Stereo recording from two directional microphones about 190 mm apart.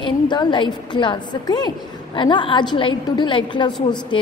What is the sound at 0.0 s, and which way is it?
A woman's voice, 25° left (ahead or behind).